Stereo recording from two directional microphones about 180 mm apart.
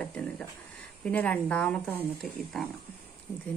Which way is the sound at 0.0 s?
5° left (ahead or behind).